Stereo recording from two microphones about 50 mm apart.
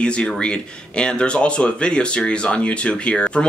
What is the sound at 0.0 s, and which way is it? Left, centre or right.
Speech, left.